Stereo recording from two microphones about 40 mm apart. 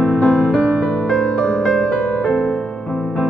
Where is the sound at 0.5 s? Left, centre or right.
Left; by 2.4 s centre.